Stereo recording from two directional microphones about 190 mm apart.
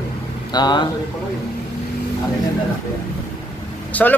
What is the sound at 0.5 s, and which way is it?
Speech, 25° left (ahead or behind).